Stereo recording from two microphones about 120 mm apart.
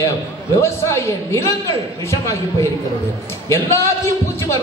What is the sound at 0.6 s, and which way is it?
Speech, 20° left (ahead or behind).